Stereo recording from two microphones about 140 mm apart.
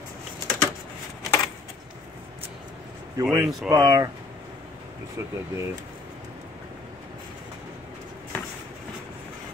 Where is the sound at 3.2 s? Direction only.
20° right (ahead or behind).